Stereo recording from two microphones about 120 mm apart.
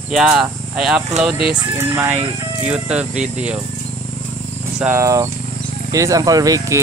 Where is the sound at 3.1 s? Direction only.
75° right (ahead or behind).